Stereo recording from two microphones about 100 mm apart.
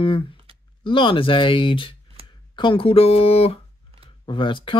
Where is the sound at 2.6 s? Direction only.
60° left (ahead or behind); by 3.6 s 75° left (ahead or behind).